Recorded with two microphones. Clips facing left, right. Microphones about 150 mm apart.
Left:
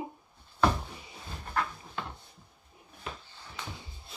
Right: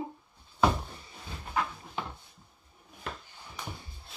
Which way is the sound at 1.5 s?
10° right (ahead or behind).